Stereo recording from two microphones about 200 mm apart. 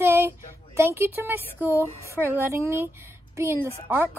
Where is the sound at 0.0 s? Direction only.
10° right (ahead or behind).